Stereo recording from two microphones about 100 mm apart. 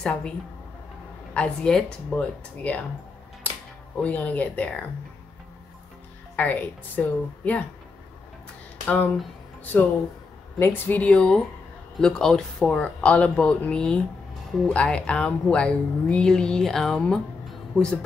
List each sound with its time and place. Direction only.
0.0 s speech: 10° left (ahead or behind)
1.3 s speech: 10° left (ahead or behind)
4.0 s speech: 15° left (ahead or behind)
6.3 s speech: 15° left (ahead or behind)
9.7 s speech: 20° left (ahead or behind)